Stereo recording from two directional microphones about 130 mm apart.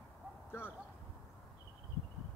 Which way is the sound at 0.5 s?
15° left (ahead or behind).